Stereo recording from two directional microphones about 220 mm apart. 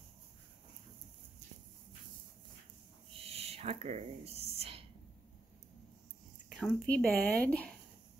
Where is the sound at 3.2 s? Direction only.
25° right (ahead or behind).